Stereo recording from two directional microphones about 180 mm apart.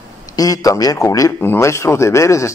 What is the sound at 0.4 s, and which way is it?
Speech, 20° left (ahead or behind).